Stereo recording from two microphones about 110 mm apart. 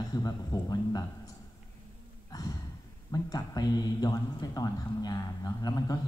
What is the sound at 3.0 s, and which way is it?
A man's voice, 35° left (ahead or behind).